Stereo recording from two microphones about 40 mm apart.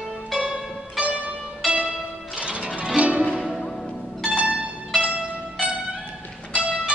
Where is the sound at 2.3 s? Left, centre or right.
Right.